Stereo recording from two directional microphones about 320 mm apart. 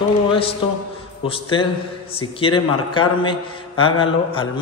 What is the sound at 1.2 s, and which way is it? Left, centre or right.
Speech, centre.